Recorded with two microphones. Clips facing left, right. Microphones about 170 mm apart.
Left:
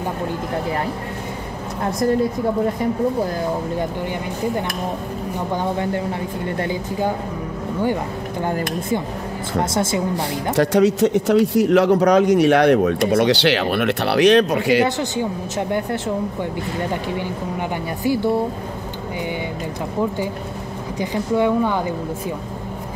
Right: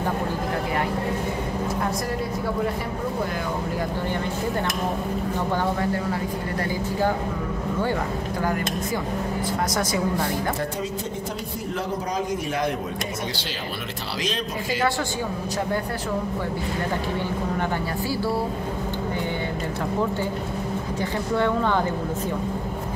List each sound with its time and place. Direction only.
7.8 s speech: 20° left (ahead or behind)
10.5 s a man's voice: 85° left; by 14.9 s 70° left (ahead or behind)
17.6 s speech: 20° left (ahead or behind)
21.0 s speech: 15° left (ahead or behind)